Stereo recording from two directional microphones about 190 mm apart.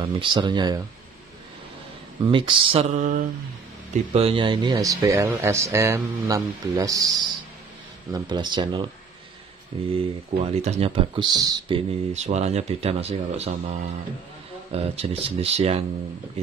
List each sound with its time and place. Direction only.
0.0 s speech: 25° right (ahead or behind)
2.2 s speech: 25° right (ahead or behind)
9.9 s speech: 35° right (ahead or behind)
12.1 s speech: 35° right (ahead or behind)